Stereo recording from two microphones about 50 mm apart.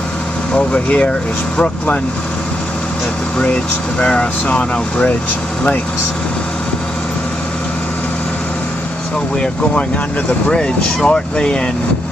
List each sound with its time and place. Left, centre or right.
0.5 s speech: left
4.0 s speech: left
10.5 s speech: centre